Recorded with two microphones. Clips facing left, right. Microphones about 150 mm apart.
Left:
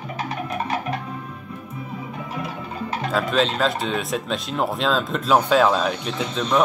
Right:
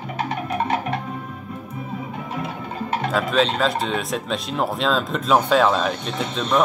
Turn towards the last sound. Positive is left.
turn(degrees=0)  # may be behind; listen again after turning